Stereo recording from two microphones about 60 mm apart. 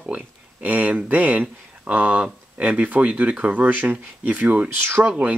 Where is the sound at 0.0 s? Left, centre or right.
Right.